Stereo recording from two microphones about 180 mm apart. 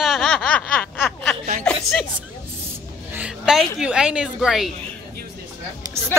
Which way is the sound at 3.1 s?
5° right (ahead or behind).